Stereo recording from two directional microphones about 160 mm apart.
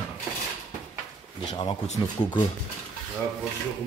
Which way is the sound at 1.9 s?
25° left (ahead or behind).